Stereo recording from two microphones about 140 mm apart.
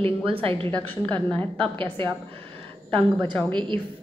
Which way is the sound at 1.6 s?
40° right (ahead or behind).